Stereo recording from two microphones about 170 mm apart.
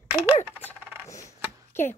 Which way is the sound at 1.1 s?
20° left (ahead or behind).